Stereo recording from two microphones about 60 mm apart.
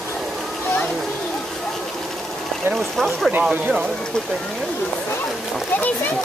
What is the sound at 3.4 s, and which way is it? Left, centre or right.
Speech, centre.